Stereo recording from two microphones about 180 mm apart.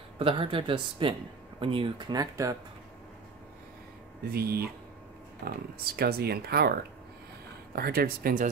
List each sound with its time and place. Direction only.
0.2 s speech: 30° right (ahead or behind)
4.2 s speech: 60° right (ahead or behind)